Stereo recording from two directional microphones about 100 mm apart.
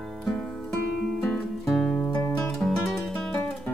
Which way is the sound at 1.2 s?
5° left (ahead or behind).